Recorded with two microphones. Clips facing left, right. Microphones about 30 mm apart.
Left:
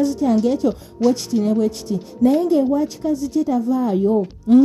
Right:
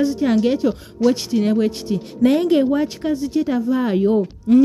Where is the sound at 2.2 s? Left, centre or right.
Right.